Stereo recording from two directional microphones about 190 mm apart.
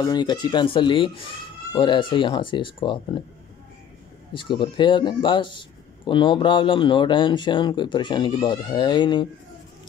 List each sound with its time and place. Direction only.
0.0 s speech: 20° left (ahead or behind)
4.4 s speech: 25° left (ahead or behind)